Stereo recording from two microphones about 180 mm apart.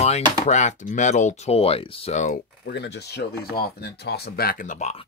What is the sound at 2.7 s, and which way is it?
Speech, 70° left (ahead or behind).